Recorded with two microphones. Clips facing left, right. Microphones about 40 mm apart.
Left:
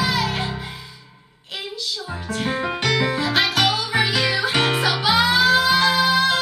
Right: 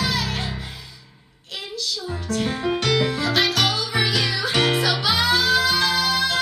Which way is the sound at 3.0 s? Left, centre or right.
Centre.